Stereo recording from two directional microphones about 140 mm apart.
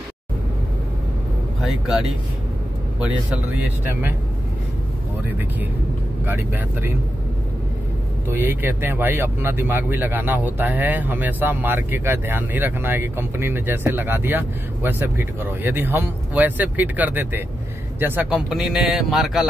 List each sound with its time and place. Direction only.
1.6 s speech: centre (ahead or behind)
6.2 s speech: 15° right (ahead or behind)
8.3 s speech: 15° right (ahead or behind); by 19.4 s centre (ahead or behind)